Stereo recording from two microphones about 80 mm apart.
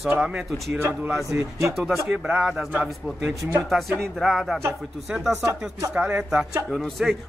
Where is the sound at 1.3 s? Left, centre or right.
Right.